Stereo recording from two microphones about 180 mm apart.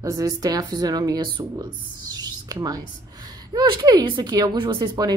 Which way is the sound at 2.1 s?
20° right (ahead or behind).